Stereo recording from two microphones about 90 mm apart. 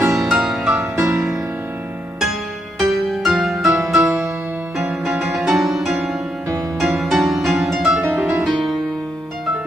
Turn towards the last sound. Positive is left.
turn(degrees=-5)  # may be behind; listen again after turning